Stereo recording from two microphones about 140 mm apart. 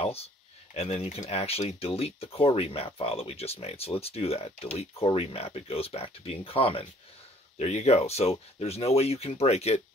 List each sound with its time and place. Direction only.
0.0 s speech: 45° left (ahead or behind)